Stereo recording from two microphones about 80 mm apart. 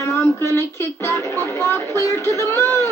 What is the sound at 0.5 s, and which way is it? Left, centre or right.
Speech, left.